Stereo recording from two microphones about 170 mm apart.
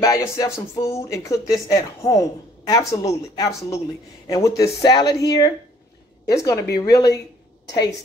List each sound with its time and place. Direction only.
0.0 s speech: 20° left (ahead or behind)